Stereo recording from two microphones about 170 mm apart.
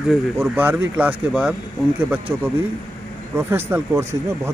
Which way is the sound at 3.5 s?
15° right (ahead or behind).